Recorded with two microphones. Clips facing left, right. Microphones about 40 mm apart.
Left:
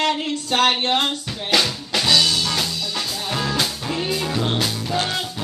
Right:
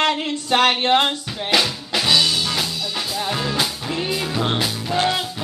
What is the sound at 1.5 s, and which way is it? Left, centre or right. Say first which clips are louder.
Drum kit: even; centre.